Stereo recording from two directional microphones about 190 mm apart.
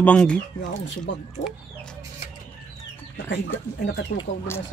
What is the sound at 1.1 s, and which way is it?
Speech, 75° left (ahead or behind).